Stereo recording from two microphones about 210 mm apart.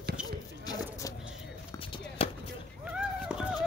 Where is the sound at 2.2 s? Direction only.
25° left (ahead or behind).